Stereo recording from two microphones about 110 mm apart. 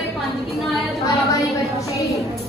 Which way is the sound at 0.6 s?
Centre (ahead or behind).